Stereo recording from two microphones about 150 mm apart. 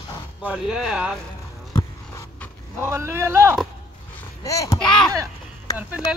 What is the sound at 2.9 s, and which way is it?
Speech, 15° right (ahead or behind).